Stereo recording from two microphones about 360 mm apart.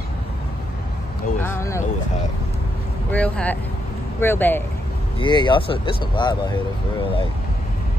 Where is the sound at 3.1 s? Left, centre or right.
Centre.